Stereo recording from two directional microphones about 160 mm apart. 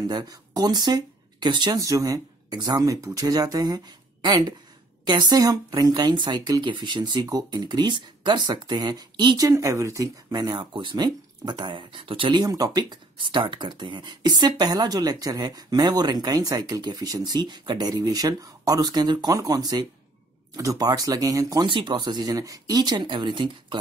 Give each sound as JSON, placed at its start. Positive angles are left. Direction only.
{"t": 0.0, "sound": "speech", "side_deg": -25}